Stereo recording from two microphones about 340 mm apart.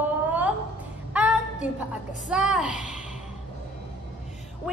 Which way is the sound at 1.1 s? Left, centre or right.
Centre.